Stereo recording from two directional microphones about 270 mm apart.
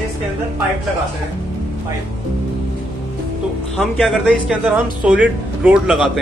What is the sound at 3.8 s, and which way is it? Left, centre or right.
Speech, centre.